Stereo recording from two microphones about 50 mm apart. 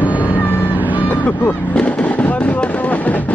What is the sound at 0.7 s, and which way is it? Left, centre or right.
Vehicle, right.